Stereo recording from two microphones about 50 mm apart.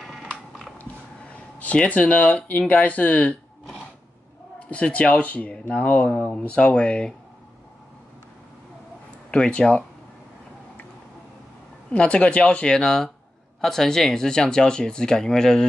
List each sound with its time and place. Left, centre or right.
0.0 s a sound: centre
1.3 s speech: left
4.6 s speech: left
9.3 s speech: centre
11.9 s speech: left